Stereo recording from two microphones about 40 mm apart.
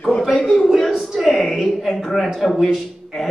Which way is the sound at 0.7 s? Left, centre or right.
Centre.